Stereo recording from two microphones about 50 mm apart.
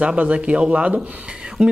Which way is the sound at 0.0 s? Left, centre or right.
Right.